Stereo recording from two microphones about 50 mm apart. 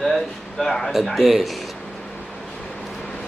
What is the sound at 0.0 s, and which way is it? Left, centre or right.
Speech, centre.